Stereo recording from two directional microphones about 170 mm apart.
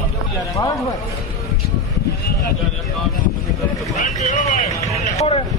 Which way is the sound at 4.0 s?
45° left (ahead or behind).